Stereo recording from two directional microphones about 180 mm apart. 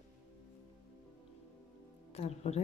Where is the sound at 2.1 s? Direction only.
35° left (ahead or behind).